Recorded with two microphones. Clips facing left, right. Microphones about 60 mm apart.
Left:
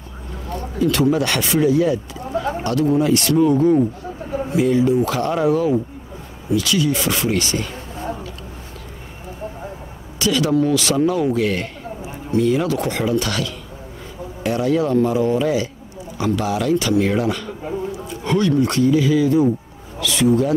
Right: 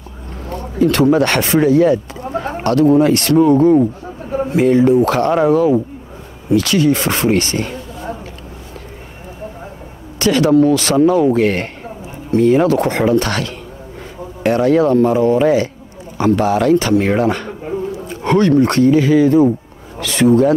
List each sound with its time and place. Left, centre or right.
0.5 s speech: right
10.1 s speech: right